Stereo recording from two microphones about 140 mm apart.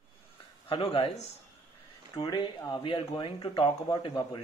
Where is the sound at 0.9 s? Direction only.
45° left (ahead or behind).